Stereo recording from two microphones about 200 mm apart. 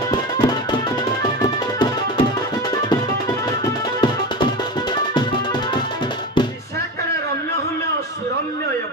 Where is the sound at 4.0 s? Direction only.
20° left (ahead or behind).